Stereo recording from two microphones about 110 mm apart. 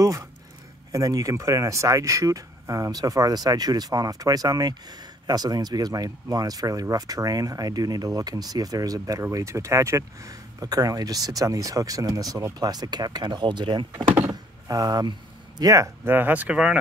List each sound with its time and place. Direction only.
0.0 s speech: 30° right (ahead or behind)
13.9 s speech: 15° right (ahead or behind)
14.7 s speech: 35° right (ahead or behind); by 16.7 s 10° right (ahead or behind)